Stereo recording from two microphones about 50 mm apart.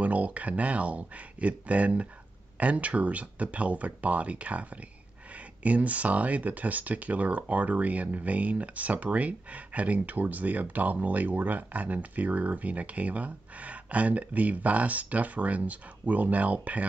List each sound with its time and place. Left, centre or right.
0.0 s speech: right